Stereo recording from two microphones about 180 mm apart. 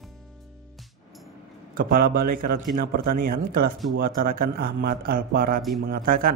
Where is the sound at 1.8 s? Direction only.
55° right (ahead or behind).